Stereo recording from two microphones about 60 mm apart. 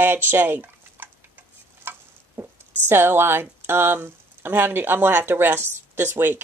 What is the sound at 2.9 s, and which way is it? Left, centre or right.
Speech, right.